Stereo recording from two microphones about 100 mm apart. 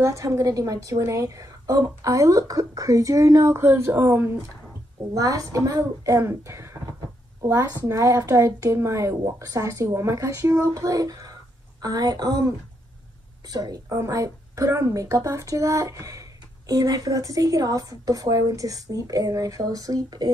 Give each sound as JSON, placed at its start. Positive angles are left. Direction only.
{"t": 0.0, "sound": "a woman's voice", "side_deg": -30}
{"t": 5.1, "sound": "a woman's voice", "side_deg": -35}